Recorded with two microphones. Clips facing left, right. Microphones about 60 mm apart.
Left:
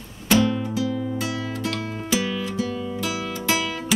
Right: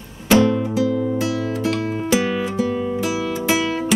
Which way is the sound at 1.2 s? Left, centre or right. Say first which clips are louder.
Right 6 dB; centre.